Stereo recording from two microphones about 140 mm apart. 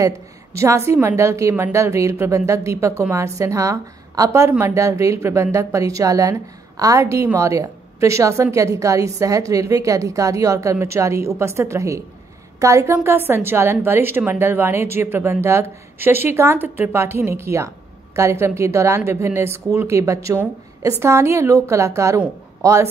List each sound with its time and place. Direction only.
0.0 s a woman's voice: 20° right (ahead or behind)